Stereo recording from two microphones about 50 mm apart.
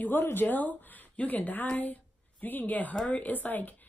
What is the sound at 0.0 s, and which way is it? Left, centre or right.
A woman's voice, left.